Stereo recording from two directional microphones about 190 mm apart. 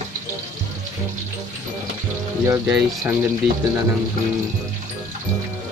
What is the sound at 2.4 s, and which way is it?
Speech, 15° right (ahead or behind).